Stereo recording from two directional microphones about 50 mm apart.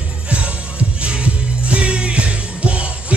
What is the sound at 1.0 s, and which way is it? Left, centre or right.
Music, right.